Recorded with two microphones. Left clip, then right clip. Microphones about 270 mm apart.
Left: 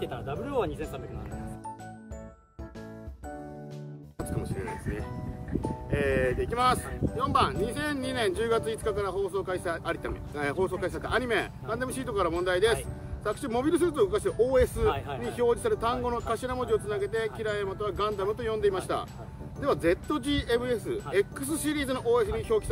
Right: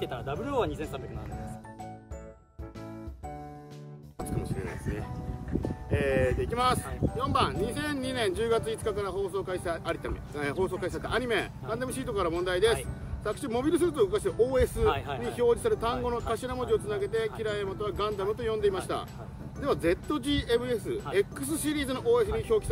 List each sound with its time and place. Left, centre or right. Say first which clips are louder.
0.0 s speech: right 1 dB; centre
4.2 s speech: left 1 dB; centre